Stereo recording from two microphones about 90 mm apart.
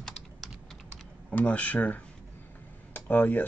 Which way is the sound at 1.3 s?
15° left (ahead or behind).